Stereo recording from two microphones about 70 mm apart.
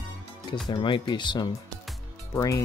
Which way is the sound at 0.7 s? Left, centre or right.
Left.